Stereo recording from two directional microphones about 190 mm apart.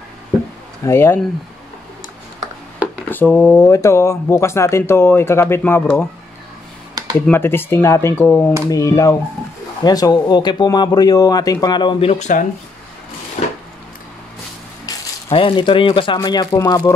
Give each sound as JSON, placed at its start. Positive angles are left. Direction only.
{"t": 0.8, "sound": "speech", "side_deg": 15}
{"t": 3.1, "sound": "speech", "side_deg": 10}
{"t": 7.2, "sound": "speech", "side_deg": 10}
{"t": 13.4, "sound": "a sound", "side_deg": 30}
{"t": 15.2, "sound": "speech", "side_deg": 30}